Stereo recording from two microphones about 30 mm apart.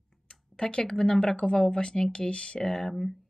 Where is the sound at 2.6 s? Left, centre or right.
Centre.